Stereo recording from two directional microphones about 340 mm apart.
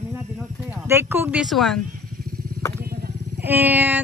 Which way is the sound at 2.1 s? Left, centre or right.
Right.